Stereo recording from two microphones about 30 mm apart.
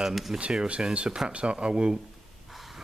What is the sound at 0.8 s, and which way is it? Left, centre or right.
Speech, right.